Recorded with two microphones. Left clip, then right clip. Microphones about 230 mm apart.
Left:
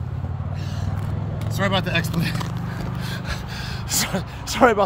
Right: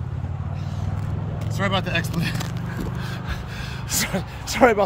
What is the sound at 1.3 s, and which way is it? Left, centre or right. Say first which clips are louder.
Speech: left 1 dB; left.